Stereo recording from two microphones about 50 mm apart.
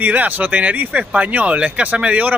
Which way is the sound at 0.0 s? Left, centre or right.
Right.